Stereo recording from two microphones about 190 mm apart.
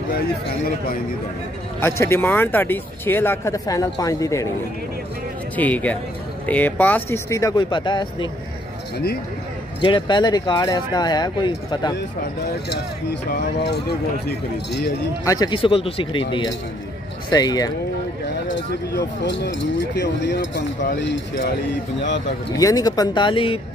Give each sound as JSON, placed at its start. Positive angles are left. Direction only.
{"t": 1.8, "sound": "speech", "side_deg": 15}
{"t": 5.6, "sound": "speech", "side_deg": 10}
{"t": 8.9, "sound": "speech", "side_deg": 55}
{"t": 9.8, "sound": "speech", "side_deg": 25}
{"t": 12.6, "sound": "speech", "side_deg": 60}
{"t": 15.2, "sound": "speech", "side_deg": 20}
{"t": 18.7, "sound": "speech", "side_deg": 65}
{"t": 22.6, "sound": "speech", "side_deg": 20}